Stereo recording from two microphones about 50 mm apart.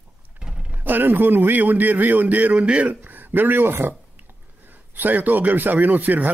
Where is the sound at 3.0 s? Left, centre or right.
Right.